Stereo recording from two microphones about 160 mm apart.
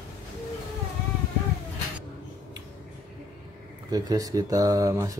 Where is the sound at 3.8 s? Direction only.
25° right (ahead or behind).